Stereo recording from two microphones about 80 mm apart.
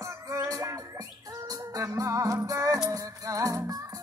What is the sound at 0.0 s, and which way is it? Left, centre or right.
Music, right.